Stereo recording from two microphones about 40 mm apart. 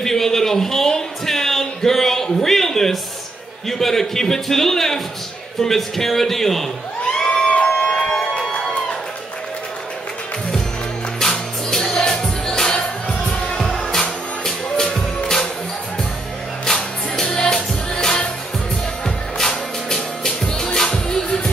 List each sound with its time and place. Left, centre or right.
0.0 s a sound: centre
3.6 s a man's voice: centre
7.3 s music: left
7.7 s a sound: left
8.4 s music: centre
11.1 s music: centre
16.6 s music: centre